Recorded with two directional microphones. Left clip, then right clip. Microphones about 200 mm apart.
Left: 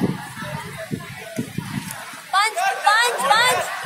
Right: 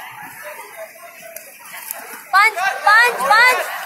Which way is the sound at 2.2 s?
15° right (ahead or behind).